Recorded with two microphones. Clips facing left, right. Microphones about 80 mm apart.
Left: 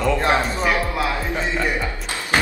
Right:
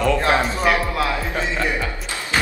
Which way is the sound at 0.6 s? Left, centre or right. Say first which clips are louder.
Right 2 dB; centre.